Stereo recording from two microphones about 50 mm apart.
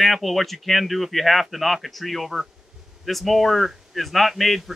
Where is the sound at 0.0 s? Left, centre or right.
Centre.